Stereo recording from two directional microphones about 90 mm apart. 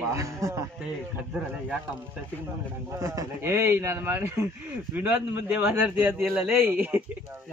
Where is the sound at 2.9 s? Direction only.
35° right (ahead or behind).